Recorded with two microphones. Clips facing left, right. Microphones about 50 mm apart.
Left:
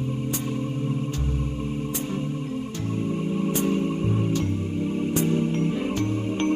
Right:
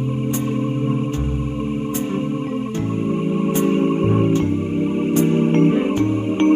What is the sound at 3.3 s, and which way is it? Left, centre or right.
Music, right.